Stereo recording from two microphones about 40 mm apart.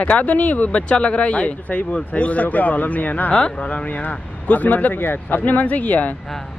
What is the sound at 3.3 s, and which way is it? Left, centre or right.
Speech, left.